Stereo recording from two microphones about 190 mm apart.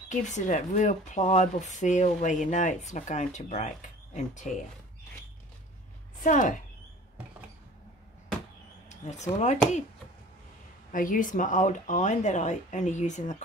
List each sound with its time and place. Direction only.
0.1 s speech: 40° left (ahead or behind)
6.2 s speech: 40° left (ahead or behind)
8.8 s speech: 35° left (ahead or behind)
10.9 s speech: 45° left (ahead or behind)